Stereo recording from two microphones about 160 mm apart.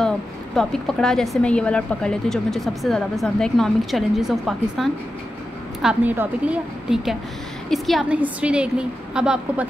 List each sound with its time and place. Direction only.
0.6 s a woman's voice: 5° left (ahead or behind)